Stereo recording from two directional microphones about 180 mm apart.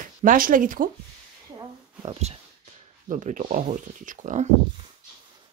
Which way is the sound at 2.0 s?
35° right (ahead or behind).